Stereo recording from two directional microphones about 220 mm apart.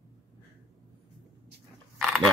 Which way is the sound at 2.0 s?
Centre (ahead or behind).